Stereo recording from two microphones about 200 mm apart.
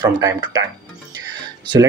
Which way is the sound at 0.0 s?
20° right (ahead or behind).